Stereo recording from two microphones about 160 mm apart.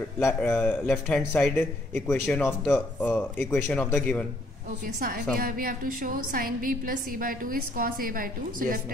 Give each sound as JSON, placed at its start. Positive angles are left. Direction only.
{"t": 0.2, "sound": "speech", "side_deg": 5}
{"t": 4.8, "sound": "a woman's voice", "side_deg": -65}